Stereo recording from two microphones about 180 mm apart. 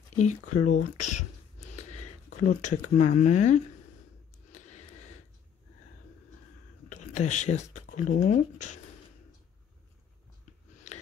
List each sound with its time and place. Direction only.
0.1 s speech: 40° left (ahead or behind)
4.5 s a sound: 40° left (ahead or behind)
6.9 s speech: 40° left (ahead or behind)